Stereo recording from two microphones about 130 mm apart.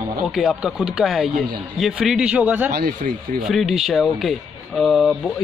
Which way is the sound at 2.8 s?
90° right.